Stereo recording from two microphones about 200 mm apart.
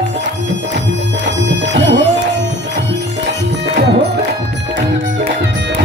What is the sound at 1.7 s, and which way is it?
Music, 65° right (ahead or behind).